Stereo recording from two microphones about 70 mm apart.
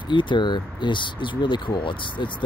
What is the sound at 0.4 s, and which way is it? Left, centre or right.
Speech, left.